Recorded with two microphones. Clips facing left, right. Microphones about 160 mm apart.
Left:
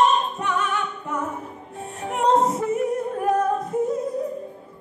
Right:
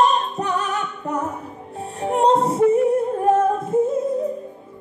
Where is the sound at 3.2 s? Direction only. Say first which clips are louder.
Right 1 dB; 25° right (ahead or behind).